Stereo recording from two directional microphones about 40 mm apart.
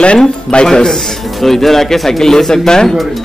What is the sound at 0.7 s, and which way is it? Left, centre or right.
Speech, centre.